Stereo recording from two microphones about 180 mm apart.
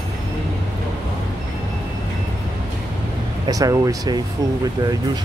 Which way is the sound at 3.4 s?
20° right (ahead or behind).